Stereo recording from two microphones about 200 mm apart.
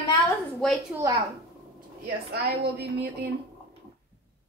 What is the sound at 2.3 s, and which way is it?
Speech, 55° right (ahead or behind).